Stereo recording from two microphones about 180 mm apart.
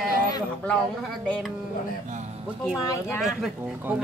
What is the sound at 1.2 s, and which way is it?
Speech, 5° left (ahead or behind).